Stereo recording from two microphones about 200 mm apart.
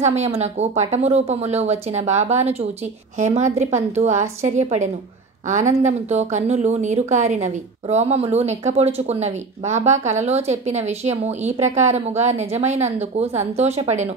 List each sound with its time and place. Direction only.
0.0 s a woman's voice: 35° right (ahead or behind)